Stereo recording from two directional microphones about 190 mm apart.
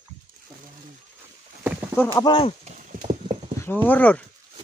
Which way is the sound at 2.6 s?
40° right (ahead or behind).